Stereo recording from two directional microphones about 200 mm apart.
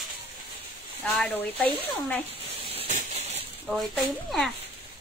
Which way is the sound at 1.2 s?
10° left (ahead or behind).